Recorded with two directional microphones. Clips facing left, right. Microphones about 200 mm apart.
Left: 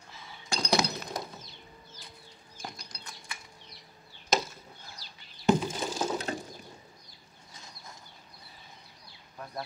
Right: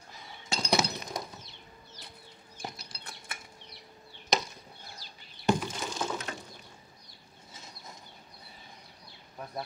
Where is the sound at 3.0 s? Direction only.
60° right (ahead or behind).